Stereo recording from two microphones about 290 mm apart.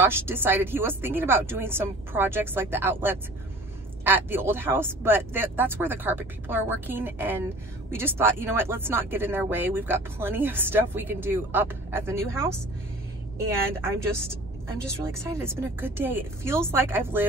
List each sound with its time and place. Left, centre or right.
0.0 s speech: centre
13.7 s speech: centre
15.0 s speech: centre